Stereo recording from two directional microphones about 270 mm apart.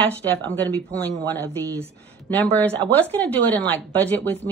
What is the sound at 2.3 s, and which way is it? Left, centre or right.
A woman's voice, centre.